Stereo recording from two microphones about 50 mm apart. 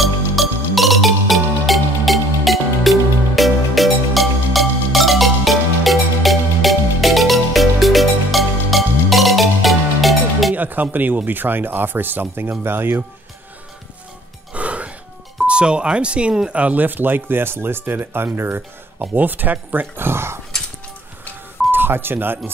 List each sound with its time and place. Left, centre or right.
0.0 s music: centre
10.5 s speech: right
14.5 s music: right
15.4 s speech: right
18.9 s speech: right
21.7 s speech: right